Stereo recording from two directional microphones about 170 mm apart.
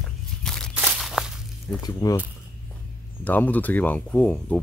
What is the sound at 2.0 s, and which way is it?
Speech, 25° left (ahead or behind).